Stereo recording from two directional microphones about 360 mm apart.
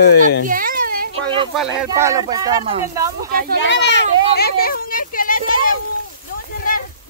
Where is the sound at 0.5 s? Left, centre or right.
Right.